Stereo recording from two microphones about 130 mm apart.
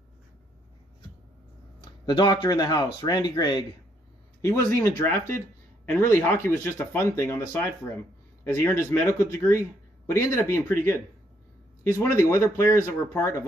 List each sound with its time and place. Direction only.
1.9 s speech: 35° left (ahead or behind)
4.4 s speech: 20° left (ahead or behind)
11.8 s speech: 20° left (ahead or behind)